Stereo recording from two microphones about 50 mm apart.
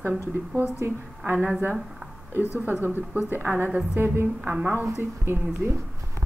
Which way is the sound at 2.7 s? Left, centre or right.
Right.